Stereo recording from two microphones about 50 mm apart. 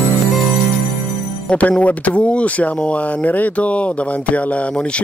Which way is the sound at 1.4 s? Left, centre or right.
Left.